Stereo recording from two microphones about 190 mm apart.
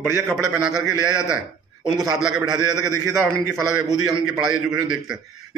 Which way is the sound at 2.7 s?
15° right (ahead or behind).